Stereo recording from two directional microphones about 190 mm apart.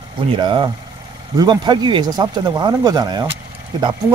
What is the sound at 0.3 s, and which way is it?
A man's voice, 25° right (ahead or behind).